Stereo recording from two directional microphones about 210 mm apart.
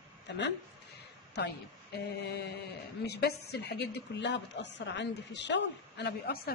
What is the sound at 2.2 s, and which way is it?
A woman's voice, 50° left (ahead or behind).